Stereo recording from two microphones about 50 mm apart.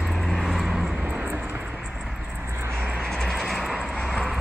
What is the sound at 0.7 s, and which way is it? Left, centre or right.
Vehicle, centre.